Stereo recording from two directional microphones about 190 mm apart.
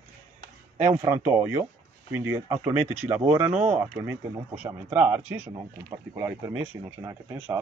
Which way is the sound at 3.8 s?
10° right (ahead or behind).